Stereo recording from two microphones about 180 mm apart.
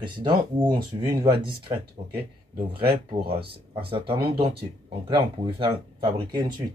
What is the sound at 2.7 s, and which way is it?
Speech, 60° right (ahead or behind).